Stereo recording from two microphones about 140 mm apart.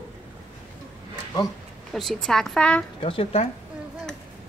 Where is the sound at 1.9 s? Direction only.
Centre (ahead or behind).